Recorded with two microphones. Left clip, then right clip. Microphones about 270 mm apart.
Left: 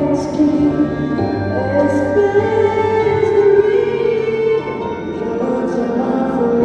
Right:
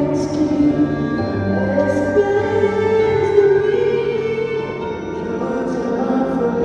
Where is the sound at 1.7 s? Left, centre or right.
Left.